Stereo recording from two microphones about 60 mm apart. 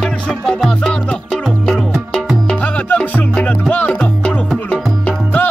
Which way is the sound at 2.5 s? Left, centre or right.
Left.